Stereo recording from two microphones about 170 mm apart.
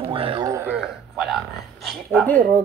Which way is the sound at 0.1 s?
30° right (ahead or behind).